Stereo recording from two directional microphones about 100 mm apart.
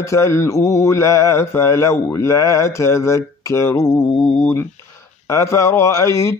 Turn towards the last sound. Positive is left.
turn(degrees=35)  # may be behind; listen again after turning